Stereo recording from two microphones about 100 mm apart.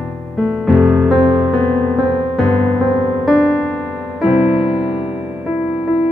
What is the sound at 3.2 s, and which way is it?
Music, 10° left (ahead or behind).